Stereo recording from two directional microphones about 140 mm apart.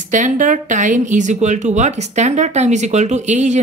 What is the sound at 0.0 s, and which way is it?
Speech, 65° right (ahead or behind).